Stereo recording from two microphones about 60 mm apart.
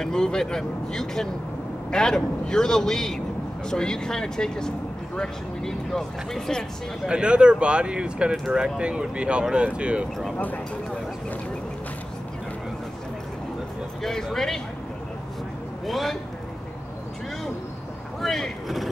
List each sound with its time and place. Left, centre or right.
0.0 s speech: centre
7.1 s speech: centre
10.4 s speech: left
14.0 s speech: centre
15.8 s a man's voice: centre
18.2 s vehicle: centre